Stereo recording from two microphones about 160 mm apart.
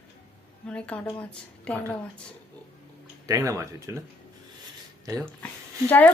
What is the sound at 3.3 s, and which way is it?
Speech, 20° right (ahead or behind).